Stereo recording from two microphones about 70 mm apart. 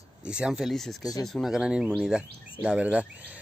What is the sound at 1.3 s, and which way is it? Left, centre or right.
Insect, centre.